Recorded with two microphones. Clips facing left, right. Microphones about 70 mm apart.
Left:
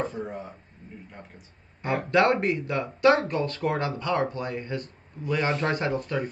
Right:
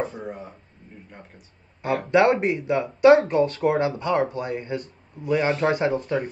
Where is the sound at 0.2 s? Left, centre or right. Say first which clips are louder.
Even; centre.